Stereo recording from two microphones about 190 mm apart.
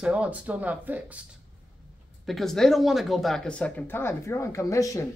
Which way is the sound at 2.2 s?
Centre (ahead or behind).